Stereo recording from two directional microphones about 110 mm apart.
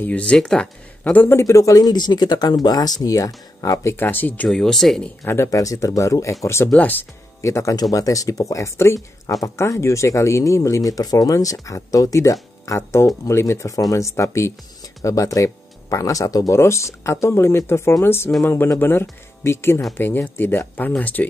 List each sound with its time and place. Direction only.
0.0 s speech: 10° left (ahead or behind)
1.1 s speech: 15° left (ahead or behind)
1.4 s speech: 30° left (ahead or behind)
3.9 s speech: 15° left (ahead or behind)
4.5 s speech: 5° left (ahead or behind)
5.2 s speech: 25° left (ahead or behind)
7.4 s speech: 30° left (ahead or behind)